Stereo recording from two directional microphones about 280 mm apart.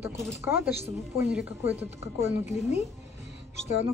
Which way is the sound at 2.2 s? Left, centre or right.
Left.